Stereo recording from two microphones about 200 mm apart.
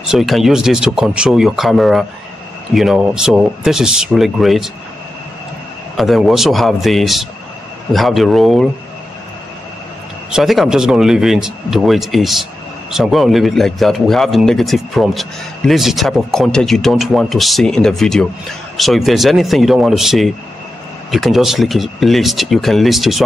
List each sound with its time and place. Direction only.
0.0 s speech: centre (ahead or behind)
5.9 s speech: centre (ahead or behind)
10.3 s speech: centre (ahead or behind)